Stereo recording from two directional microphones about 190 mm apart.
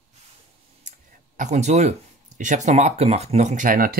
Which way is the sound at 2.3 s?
40° right (ahead or behind).